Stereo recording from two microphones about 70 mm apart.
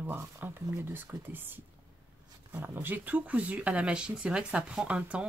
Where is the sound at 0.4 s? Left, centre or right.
Right.